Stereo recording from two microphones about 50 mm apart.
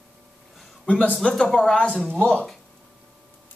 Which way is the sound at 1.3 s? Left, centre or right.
Centre.